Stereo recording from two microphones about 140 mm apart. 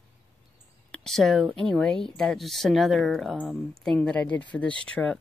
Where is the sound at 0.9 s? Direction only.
5° left (ahead or behind).